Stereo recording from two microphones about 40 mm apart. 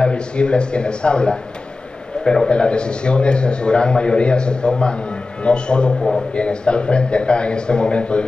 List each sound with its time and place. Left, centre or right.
0.0 s a man's voice: left